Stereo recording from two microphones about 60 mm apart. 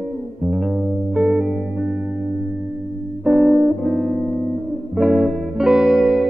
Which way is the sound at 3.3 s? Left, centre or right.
Centre.